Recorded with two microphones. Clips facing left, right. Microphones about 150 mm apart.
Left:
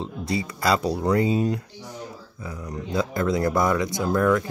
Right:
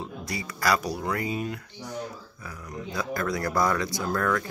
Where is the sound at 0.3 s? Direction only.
25° left (ahead or behind).